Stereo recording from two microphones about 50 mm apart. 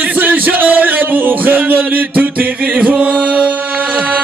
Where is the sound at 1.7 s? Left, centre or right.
Right.